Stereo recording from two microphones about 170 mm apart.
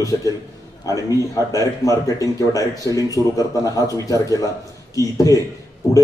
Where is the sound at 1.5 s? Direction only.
20° left (ahead or behind).